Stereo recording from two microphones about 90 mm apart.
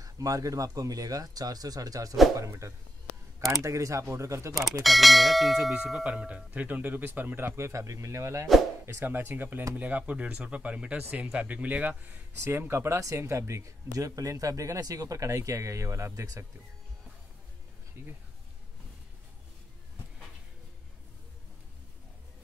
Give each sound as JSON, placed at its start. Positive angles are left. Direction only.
{"t": 0.0, "sound": "speech", "side_deg": -40}
{"t": 4.8, "sound": "bell", "side_deg": 0}
{"t": 5.8, "sound": "speech", "side_deg": -10}
{"t": 18.0, "sound": "speech", "side_deg": -30}